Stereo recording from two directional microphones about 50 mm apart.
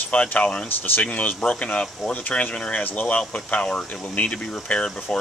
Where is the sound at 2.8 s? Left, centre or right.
Left; by 5.0 s centre.